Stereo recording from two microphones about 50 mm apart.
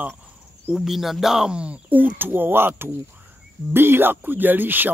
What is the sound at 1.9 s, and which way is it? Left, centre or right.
Speech, right.